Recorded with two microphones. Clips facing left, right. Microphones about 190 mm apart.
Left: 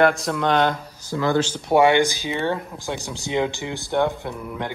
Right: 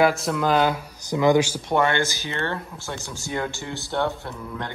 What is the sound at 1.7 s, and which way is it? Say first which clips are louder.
A man's voice: left 9 dB; 15° left (ahead or behind).